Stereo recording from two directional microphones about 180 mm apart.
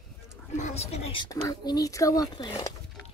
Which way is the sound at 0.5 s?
40° left (ahead or behind).